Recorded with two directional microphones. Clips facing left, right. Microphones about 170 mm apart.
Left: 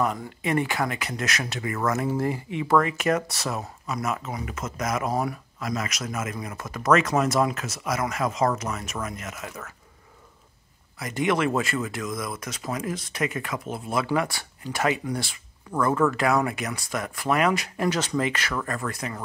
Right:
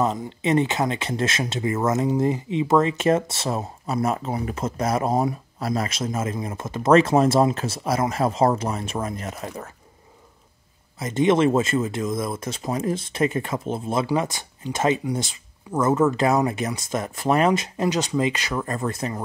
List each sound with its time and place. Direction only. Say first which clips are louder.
0.0 s speech: right 3 dB; 20° right (ahead or behind)
11.0 s speech: right 6 dB; 25° right (ahead or behind)